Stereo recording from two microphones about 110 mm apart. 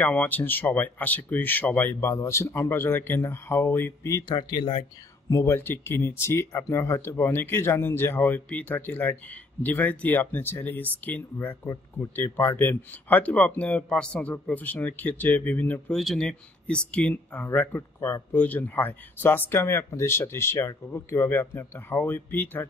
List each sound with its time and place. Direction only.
0.0 s speech: 15° left (ahead or behind)
4.3 s speech: 40° left (ahead or behind)
5.3 s speech: 25° left (ahead or behind)
15.9 s speech: centre (ahead or behind)